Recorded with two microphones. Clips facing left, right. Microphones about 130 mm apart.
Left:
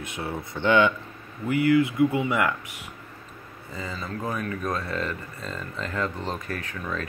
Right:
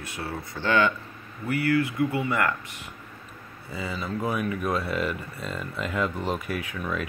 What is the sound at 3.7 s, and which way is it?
Speech, 10° right (ahead or behind).